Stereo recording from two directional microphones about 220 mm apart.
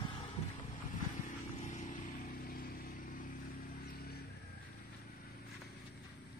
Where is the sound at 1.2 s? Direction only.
35° left (ahead or behind).